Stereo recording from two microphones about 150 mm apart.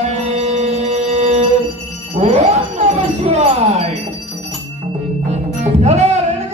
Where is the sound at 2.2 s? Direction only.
45° right (ahead or behind).